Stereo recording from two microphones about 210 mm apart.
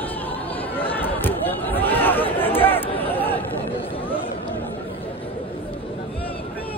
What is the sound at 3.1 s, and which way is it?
Chatter, 10° left (ahead or behind).